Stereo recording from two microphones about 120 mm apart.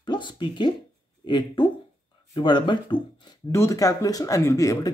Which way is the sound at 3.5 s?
25° left (ahead or behind).